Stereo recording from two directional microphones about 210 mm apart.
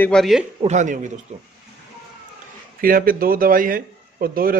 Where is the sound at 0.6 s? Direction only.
35° right (ahead or behind).